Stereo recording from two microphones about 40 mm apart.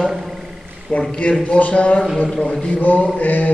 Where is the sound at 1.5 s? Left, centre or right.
Left.